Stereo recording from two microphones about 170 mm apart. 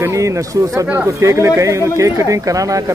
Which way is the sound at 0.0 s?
15° right (ahead or behind).